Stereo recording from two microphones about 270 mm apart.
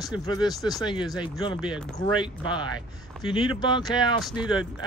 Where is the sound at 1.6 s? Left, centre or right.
Centre.